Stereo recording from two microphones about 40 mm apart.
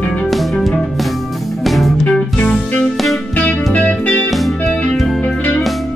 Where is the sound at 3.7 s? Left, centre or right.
Left.